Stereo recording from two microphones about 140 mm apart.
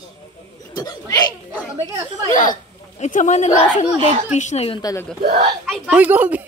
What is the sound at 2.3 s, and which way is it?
Speech, 70° left (ahead or behind).